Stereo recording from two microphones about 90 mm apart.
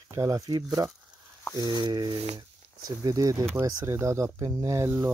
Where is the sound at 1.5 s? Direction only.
55° right (ahead or behind).